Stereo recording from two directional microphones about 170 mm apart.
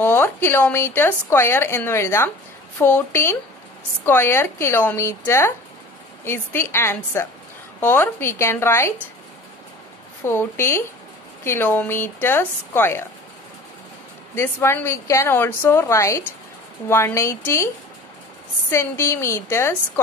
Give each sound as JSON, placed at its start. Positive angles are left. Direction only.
{"t": 0.0, "sound": "a woman's voice", "side_deg": 10}
{"t": 10.2, "sound": "a woman's voice", "side_deg": 15}
{"t": 14.3, "sound": "a woman's voice", "side_deg": 15}
{"t": 18.7, "sound": "a woman's voice", "side_deg": 15}